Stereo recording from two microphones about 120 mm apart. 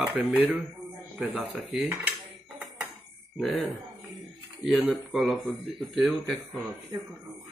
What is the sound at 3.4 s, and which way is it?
Speech, centre (ahead or behind).